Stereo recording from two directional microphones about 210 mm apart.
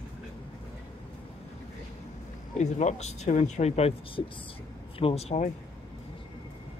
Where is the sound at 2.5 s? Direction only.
35° left (ahead or behind).